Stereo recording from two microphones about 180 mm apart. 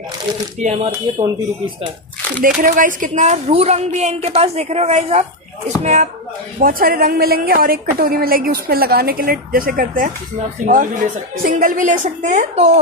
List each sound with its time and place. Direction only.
0.6 s speech: 40° right (ahead or behind)
1.2 s speech: 30° right (ahead or behind)
2.4 s speech: 50° right (ahead or behind)
6.6 s a woman's voice: 55° right (ahead or behind)